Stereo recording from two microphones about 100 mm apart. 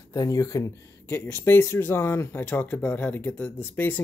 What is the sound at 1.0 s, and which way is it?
Speech, 25° left (ahead or behind).